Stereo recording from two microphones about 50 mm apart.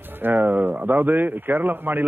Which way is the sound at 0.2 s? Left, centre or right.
Right.